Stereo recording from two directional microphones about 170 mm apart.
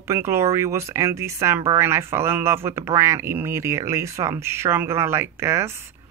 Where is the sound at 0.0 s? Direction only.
15° right (ahead or behind).